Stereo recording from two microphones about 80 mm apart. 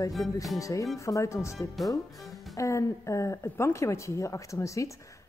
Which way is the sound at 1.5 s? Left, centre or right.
Centre.